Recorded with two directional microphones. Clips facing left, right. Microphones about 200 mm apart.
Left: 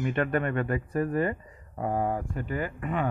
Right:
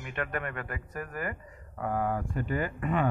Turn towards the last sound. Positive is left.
turn(degrees=20)  # may be behind; listen again after turning